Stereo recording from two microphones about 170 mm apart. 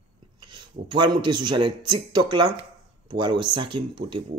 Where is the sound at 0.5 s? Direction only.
25° right (ahead or behind).